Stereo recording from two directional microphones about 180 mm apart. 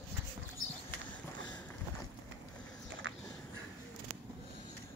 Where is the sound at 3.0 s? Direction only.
90° right.